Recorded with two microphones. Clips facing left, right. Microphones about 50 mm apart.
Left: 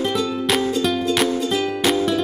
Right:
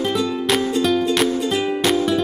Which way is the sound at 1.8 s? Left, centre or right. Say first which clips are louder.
Even; centre.